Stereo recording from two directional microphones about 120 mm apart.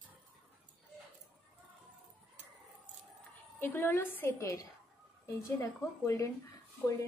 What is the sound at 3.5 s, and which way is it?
A woman's voice, 20° left (ahead or behind).